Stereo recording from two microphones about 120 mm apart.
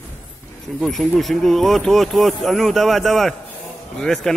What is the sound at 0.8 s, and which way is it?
Speech, centre (ahead or behind).